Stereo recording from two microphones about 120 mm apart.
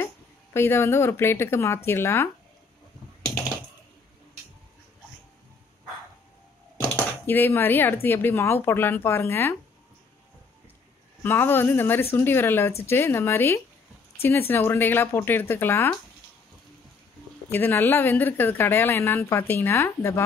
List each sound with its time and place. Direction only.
0.0 s a woman's voice: 20° left (ahead or behind)
6.8 s speech: 15° left (ahead or behind)
11.2 s a woman's voice: 15° left (ahead or behind)
17.5 s speech: 15° left (ahead or behind)